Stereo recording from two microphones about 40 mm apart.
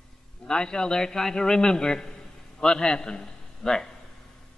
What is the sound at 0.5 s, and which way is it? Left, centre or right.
A man's voice, left.